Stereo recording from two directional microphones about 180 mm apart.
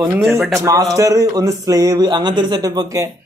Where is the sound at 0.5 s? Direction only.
15° right (ahead or behind).